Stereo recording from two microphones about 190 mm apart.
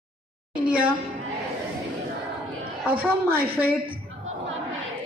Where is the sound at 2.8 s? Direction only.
10° right (ahead or behind).